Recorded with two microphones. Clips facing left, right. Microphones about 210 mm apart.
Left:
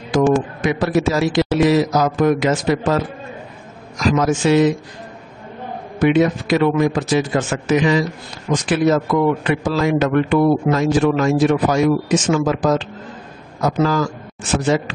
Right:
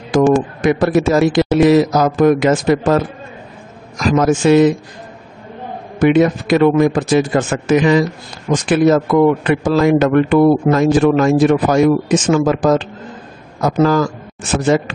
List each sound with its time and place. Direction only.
0.7 s a man's voice: 50° right (ahead or behind)
4.1 s a man's voice: 50° right (ahead or behind)
5.9 s a man's voice: 50° right (ahead or behind)